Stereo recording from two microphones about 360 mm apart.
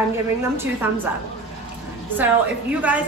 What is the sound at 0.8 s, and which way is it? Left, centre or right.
Speech, centre.